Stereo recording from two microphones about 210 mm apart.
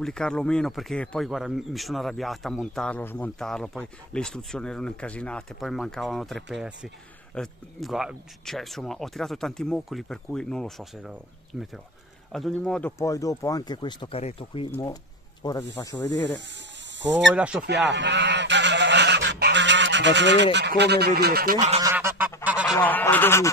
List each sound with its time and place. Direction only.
0.0 s speech: 5° left (ahead or behind)
13.0 s speech: 15° left (ahead or behind)
16.3 s speech: 55° right (ahead or behind)
17.4 s speech: 5° right (ahead or behind)
17.6 s goose: 55° right (ahead or behind)
20.5 s speech: 55° right (ahead or behind)
21.8 s goose: 10° right (ahead or behind)
22.8 s speech: 10° left (ahead or behind)